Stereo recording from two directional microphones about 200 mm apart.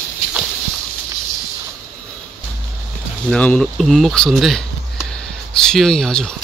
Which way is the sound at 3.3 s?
5° left (ahead or behind).